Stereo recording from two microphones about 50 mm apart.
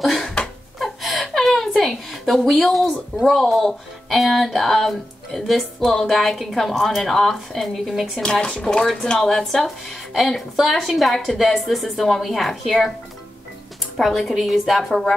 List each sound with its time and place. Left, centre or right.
0.0 s a sound: centre
2.6 s speech: centre
8.2 s speech: centre
13.9 s speech: centre